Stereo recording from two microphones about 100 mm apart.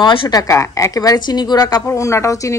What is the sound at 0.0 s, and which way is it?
Speech, 60° left (ahead or behind).